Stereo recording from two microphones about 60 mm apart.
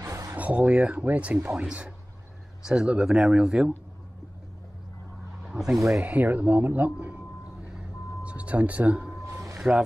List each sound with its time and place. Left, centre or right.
0.1 s a sound: right
0.4 s speech: right
5.5 s speech: centre
6.0 s speech: right
8.2 s a sound: right
9.6 s speech: centre